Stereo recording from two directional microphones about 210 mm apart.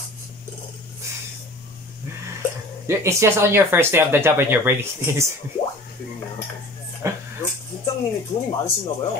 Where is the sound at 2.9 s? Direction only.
15° right (ahead or behind).